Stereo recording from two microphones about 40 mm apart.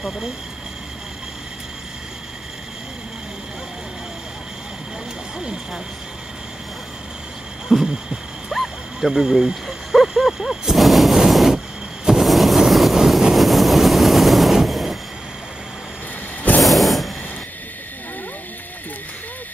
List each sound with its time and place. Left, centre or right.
5.4 s speech: centre
7.8 s heart sounds: centre
8.5 s a sound: centre
11.2 s train: centre
12.1 s vehicle: centre
12.9 s train: centre
16.6 s vehicle: centre